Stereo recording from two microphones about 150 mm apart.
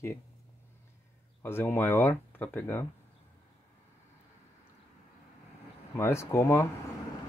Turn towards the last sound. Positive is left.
turn(degrees=15)  # may be behind; listen again after turning